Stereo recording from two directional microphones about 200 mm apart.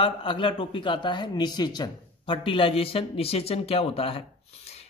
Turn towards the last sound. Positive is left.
turn(degrees=30)  # may be behind; listen again after turning